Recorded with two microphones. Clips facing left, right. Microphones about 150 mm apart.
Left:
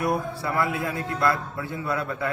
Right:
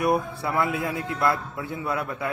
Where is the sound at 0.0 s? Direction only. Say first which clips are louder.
Right 2 dB; 20° right (ahead or behind).